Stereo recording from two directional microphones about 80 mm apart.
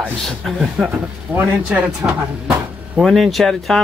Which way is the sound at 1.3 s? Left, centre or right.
Centre.